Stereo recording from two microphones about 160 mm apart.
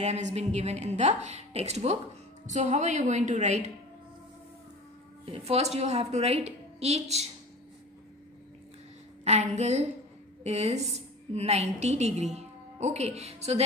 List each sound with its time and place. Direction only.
0.0 s a woman's voice: 45° right (ahead or behind)
5.2 s a woman's voice: 35° right (ahead or behind)
9.2 s a woman's voice: 45° right (ahead or behind)